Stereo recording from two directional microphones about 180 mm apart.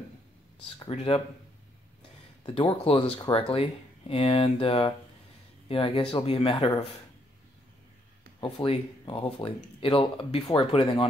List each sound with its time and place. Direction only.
0.7 s speech: 30° left (ahead or behind)
2.4 s speech: 25° left (ahead or behind)
8.4 s speech: 25° left (ahead or behind)